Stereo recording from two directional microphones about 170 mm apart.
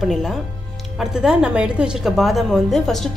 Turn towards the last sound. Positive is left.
turn(degrees=0)  # may be behind; listen again after turning